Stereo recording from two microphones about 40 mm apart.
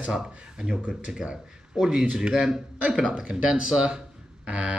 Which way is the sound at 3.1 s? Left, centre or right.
Right.